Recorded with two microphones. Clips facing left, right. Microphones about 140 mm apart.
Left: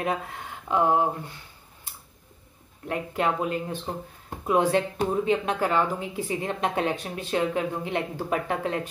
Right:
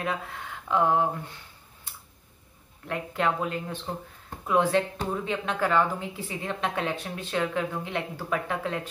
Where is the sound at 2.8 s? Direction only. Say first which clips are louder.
Left 1 dB; 20° left (ahead or behind).